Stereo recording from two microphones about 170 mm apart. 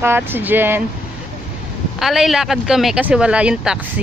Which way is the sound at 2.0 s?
Centre (ahead or behind).